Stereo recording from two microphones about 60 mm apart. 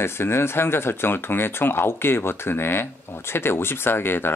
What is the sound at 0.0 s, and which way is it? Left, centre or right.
Speech, left.